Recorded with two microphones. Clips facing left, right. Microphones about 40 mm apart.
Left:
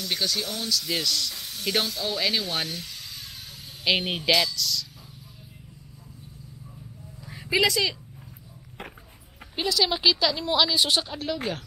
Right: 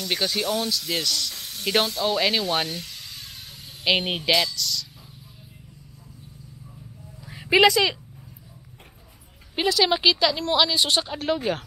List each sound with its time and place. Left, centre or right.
0.1 s speech: centre
1.7 s speech: centre
7.6 s speech: centre
9.7 s speech: centre
11.5 s speech: right